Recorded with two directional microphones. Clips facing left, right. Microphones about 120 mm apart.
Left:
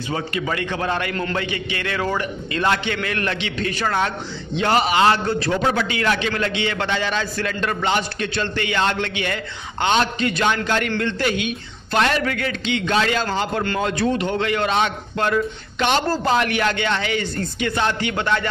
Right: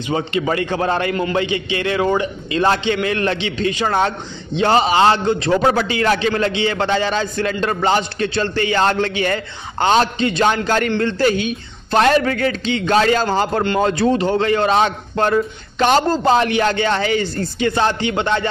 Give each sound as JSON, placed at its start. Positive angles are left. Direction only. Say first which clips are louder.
{"t": 0.1, "sound": "a man's voice", "louder": "right 6 dB", "side_deg": -25}
{"t": 5.5, "sound": "a man's voice", "louder": "right 6 dB", "side_deg": -35}